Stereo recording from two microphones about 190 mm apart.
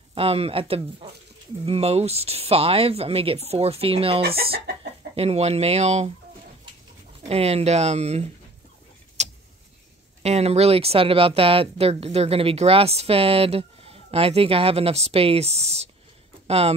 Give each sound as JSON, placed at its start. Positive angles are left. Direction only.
{"t": 0.1, "sound": "speech", "side_deg": -30}
{"t": 7.2, "sound": "speech", "side_deg": -30}
{"t": 9.2, "sound": "vehicle", "side_deg": -35}
{"t": 10.2, "sound": "speech", "side_deg": -35}